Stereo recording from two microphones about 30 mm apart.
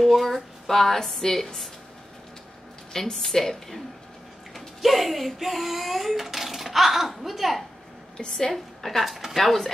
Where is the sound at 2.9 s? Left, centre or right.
Centre.